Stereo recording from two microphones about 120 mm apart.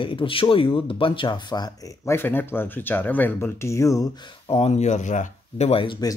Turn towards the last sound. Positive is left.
turn(degrees=60)  # may be behind; listen again after turning